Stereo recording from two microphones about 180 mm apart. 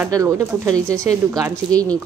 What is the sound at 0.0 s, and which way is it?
Speech, 20° right (ahead or behind).